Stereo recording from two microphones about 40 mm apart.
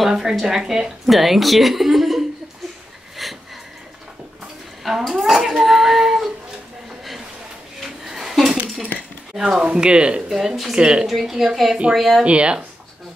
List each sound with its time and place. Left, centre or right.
0.1 s a woman's voice: centre
3.2 s sniff: centre
4.8 s speech: centre
7.8 s dishes: centre
9.3 s a woman's voice: centre
9.7 s speech: right
10.3 s a woman's voice: centre
10.7 s speech: right
11.1 s a woman's voice: centre
12.3 s speech: right